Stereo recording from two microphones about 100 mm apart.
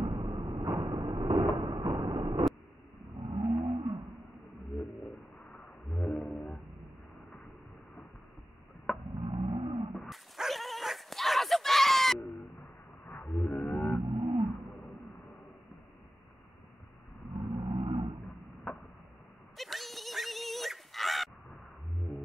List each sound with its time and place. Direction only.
0.0 s a sound: 55° right (ahead or behind)
0.7 s vehicle: 40° right (ahead or behind)
1.1 s cupboard open or close: 55° right (ahead or behind)
1.6 s a sound: 45° right (ahead or behind)
3.2 s vehicle: 80° right
4.6 s roaring cats: centre (ahead or behind)
9.1 s roaring cats: 75° right (ahead or behind)
9.9 s dog: centre (ahead or behind)
13.2 s wild animals: 5° left (ahead or behind)
13.7 s vehicle: 15° left (ahead or behind)
14.0 s a sound: 70° right (ahead or behind)
14.7 s a sound: centre (ahead or behind)
17.3 s roaring cats: 70° right (ahead or behind)
19.5 s dog: centre (ahead or behind)